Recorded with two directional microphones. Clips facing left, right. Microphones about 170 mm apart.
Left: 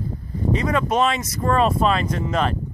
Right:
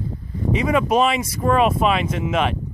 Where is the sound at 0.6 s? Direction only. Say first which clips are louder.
Right 3 dB; 15° right (ahead or behind).